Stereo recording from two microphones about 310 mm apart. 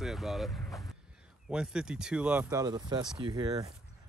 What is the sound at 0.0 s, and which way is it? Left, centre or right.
Speech, centre.